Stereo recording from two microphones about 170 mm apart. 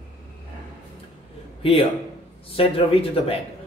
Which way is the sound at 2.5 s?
35° left (ahead or behind).